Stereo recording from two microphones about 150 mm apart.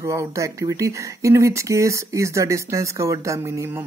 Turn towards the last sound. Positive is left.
turn(degrees=-15)  # may be behind; listen again after turning